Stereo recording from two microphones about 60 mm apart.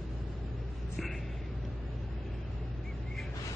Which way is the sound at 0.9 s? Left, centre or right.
Centre.